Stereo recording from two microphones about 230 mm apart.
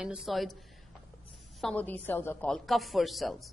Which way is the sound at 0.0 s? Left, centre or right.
Centre.